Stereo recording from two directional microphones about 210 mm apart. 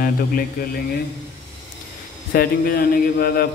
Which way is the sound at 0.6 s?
45° left (ahead or behind).